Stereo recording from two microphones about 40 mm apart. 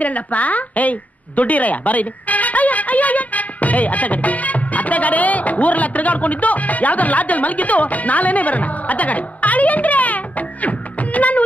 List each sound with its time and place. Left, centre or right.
0.0 s a woman's voice: left